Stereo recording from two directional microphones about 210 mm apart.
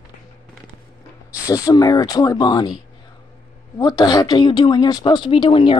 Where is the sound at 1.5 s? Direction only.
20° left (ahead or behind).